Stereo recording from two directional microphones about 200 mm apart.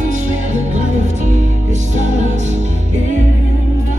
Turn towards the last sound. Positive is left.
turn(degrees=-35)  # may be behind; listen again after turning